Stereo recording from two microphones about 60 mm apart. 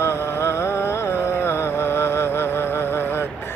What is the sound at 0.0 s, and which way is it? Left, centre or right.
Music, left.